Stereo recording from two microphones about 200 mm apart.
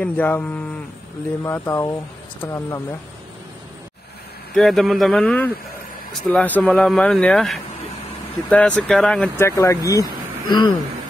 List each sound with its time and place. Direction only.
0.0 s speech: 10° left (ahead or behind)
4.6 s speech: centre (ahead or behind)
9.5 s speech: 15° left (ahead or behind)